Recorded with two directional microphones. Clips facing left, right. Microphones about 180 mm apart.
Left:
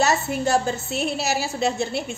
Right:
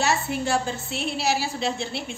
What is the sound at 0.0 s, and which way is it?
A woman's voice, 40° left (ahead or behind).